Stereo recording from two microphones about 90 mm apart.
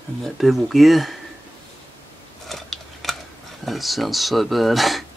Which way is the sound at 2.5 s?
Centre (ahead or behind).